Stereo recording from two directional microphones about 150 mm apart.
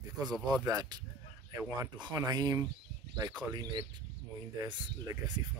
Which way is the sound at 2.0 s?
30° right (ahead or behind).